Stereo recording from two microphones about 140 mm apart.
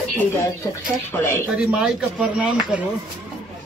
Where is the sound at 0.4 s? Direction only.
20° left (ahead or behind).